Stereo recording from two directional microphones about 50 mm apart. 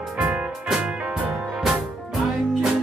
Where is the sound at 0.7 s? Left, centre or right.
Right.